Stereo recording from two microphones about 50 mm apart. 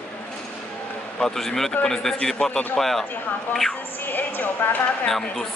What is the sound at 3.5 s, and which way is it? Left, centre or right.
Speech, centre.